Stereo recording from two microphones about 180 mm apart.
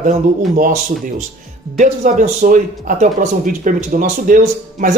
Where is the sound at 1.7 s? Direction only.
40° right (ahead or behind).